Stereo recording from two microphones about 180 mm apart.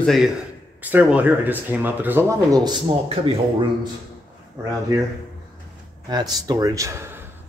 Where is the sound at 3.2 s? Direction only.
30° right (ahead or behind).